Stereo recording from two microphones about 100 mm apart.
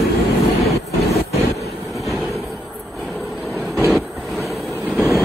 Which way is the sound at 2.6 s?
Centre (ahead or behind).